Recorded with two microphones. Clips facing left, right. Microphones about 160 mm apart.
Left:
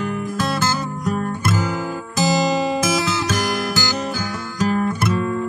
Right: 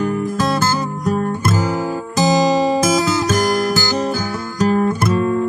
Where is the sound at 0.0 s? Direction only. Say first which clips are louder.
Right 5 dB; 40° right (ahead or behind).